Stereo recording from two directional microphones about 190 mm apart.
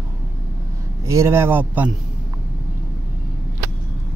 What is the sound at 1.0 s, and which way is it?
Speech, 15° right (ahead or behind).